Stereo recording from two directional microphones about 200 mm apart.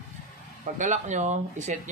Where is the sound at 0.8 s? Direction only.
35° right (ahead or behind).